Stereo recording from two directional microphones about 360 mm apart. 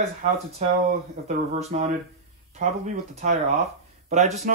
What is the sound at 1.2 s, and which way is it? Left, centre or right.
A man's voice, centre.